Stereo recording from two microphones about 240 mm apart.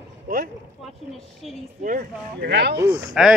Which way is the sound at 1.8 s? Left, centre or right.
Right.